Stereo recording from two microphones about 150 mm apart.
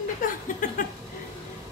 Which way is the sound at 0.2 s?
65° left (ahead or behind).